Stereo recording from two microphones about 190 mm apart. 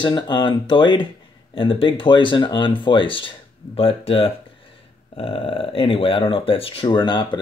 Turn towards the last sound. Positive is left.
turn(degrees=25)  # may be behind; listen again after turning